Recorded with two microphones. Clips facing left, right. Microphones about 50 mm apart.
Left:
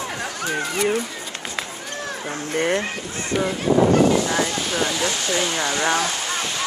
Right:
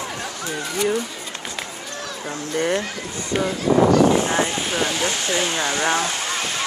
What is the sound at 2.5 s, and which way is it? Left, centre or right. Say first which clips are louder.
Speech: even; left.